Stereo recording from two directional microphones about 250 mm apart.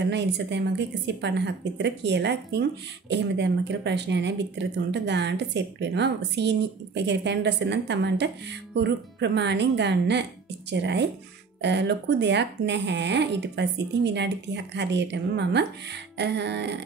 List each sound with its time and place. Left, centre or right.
0.1 s speech: right